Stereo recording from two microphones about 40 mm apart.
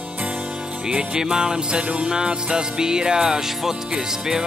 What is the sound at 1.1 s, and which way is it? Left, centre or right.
Music, centre.